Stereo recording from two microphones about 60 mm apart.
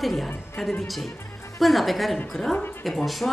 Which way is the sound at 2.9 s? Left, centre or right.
Centre.